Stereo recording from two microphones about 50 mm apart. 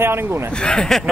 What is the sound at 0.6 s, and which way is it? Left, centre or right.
Speech, centre.